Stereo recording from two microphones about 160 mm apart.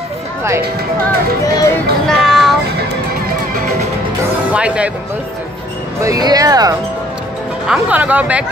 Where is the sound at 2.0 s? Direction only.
Centre (ahead or behind).